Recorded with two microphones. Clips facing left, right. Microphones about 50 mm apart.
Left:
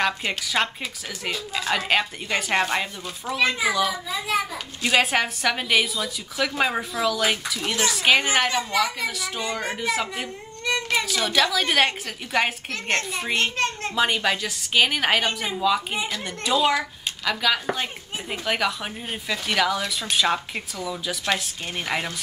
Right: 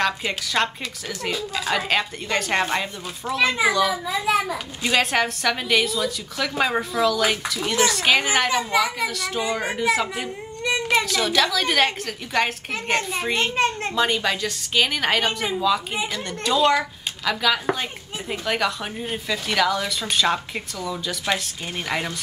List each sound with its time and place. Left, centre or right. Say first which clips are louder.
0.0 s a woman's voice: right 1 dB; centre
9.1 s a woman's voice: right 3 dB; centre
9.4 s a child's voice: right 3 dB; centre
9.8 s a woman's voice: right 4 dB; centre
10.6 s a sound: right 3 dB; centre
11.1 s a woman's voice: right 1 dB; centre
12.8 s a child's voice: right 2 dB; centre
13.6 s a child's voice: right 4 dB; centre
13.9 s a woman's voice: left 3 dB; centre
15.2 s a woman's voice: right 2 dB; centre
15.6 s a woman's voice: left 1 dB; centre